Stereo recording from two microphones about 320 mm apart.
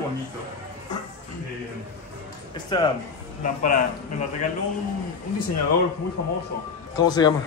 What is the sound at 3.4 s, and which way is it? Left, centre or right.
Speech, left.